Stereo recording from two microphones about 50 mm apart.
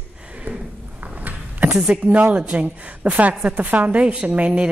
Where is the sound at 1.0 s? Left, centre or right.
Right.